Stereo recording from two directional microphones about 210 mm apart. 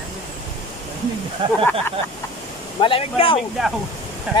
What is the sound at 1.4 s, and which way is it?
Speech, 25° right (ahead or behind).